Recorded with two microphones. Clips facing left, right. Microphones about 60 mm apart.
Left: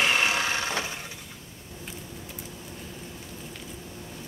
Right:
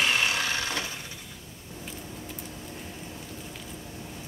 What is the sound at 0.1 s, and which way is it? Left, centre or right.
Vehicle, left.